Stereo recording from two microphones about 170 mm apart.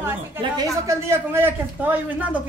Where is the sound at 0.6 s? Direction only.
15° right (ahead or behind).